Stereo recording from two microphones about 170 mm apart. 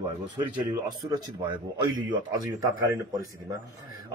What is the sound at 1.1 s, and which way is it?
Speech, 25° right (ahead or behind).